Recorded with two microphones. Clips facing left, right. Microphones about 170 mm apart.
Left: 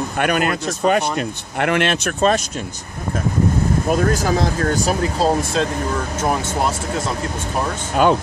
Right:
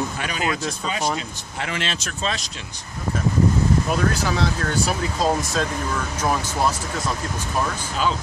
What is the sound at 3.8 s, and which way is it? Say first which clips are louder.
Speech: left 5 dB; 45° left (ahead or behind).